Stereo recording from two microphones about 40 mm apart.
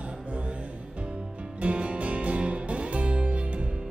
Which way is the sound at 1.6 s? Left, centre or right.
Right.